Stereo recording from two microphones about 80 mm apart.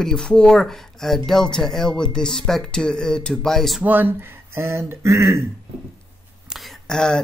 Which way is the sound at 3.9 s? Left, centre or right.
Right.